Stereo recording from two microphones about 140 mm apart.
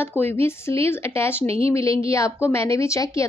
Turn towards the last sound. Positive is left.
turn(degrees=20)  # may be behind; listen again after turning